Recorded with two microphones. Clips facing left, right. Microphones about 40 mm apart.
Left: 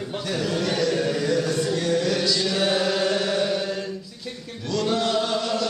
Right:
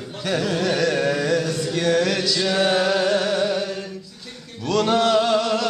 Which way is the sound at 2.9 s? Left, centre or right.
Centre.